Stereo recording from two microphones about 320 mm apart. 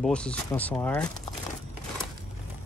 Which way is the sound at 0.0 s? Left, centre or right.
Centre.